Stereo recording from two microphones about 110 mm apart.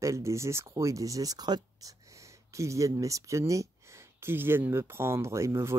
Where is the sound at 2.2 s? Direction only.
30° right (ahead or behind).